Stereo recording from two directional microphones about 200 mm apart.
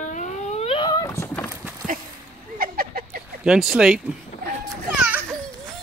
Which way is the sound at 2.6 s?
45° right (ahead or behind).